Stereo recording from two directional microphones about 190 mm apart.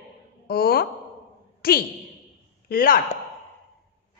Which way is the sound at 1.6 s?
50° left (ahead or behind).